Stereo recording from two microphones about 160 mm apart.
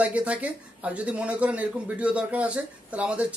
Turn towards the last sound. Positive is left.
turn(degrees=-10)  # may be behind; listen again after turning